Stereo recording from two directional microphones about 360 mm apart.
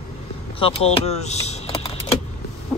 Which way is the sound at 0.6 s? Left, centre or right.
Centre.